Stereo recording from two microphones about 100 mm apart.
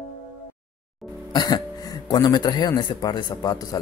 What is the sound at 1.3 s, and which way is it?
Speech, 40° left (ahead or behind).